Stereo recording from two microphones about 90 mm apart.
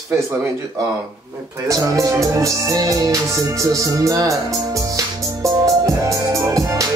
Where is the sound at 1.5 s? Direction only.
35° right (ahead or behind).